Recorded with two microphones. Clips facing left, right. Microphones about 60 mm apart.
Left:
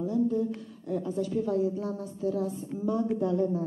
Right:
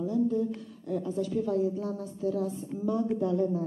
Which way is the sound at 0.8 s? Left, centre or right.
Left.